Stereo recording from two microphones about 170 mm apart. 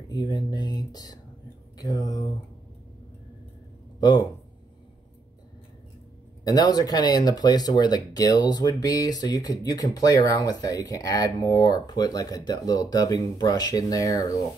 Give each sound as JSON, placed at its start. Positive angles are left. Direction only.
{"t": 0.1, "sound": "speech", "side_deg": 25}
{"t": 4.0, "sound": "speech", "side_deg": 20}
{"t": 6.4, "sound": "speech", "side_deg": 25}